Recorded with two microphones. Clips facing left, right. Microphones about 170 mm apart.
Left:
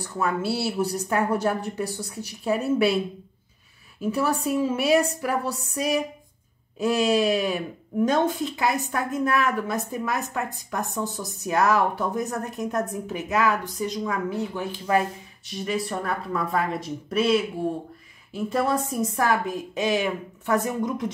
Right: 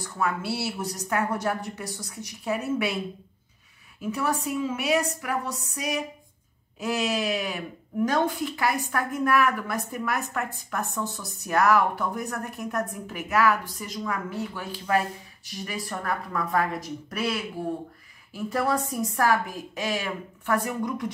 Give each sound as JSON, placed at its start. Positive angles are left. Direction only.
{"t": 0.2, "sound": "speech", "side_deg": 30}
{"t": 4.1, "sound": "a woman's voice", "side_deg": 30}